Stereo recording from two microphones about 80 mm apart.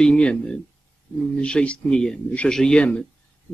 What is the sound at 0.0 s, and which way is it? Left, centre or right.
Speech, centre.